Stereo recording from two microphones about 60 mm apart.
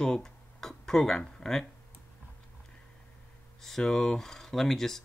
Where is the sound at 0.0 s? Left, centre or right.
Centre.